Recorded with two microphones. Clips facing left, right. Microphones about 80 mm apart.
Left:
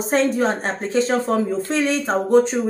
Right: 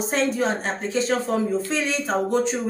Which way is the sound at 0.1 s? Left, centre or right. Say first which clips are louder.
Left 5 dB; left.